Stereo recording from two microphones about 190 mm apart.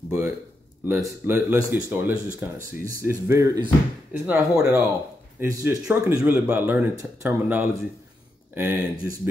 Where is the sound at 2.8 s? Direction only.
50° left (ahead or behind).